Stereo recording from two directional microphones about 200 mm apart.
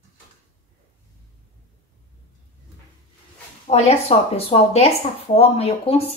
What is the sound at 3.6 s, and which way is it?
A woman's voice, 35° left (ahead or behind).